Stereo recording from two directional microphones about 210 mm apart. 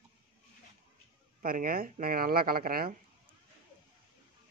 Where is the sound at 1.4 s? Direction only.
40° right (ahead or behind).